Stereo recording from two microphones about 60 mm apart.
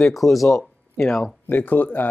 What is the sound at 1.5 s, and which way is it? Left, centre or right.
Speech, left.